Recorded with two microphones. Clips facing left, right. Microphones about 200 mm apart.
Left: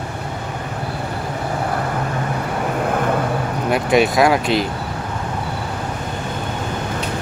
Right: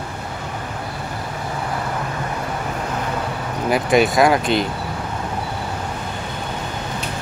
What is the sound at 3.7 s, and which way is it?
Speech, centre (ahead or behind).